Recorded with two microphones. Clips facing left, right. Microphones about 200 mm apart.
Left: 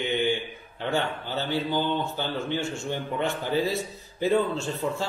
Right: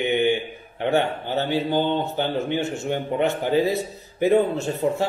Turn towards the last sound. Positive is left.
turn(degrees=-20)  # may be behind; listen again after turning